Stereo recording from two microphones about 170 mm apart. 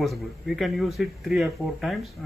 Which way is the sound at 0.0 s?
Centre (ahead or behind).